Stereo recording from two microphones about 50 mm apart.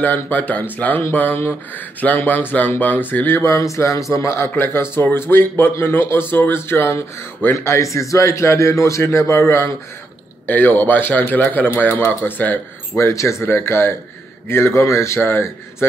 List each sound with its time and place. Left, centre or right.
0.0 s a man's voice: left
3.4 s a man's voice: left
4.6 s speech: left
7.5 s a man's voice: left
10.4 s a man's voice: left
12.9 s speech: left
13.5 s a man's voice: left
15.2 s speech: left